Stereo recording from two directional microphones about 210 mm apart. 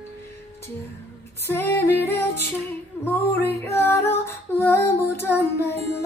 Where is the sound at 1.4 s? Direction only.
10° left (ahead or behind).